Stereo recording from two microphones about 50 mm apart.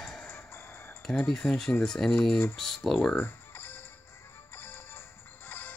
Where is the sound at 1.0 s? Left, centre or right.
Centre.